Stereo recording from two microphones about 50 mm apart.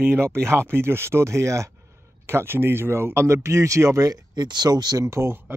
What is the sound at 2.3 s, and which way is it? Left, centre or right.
Speech, right.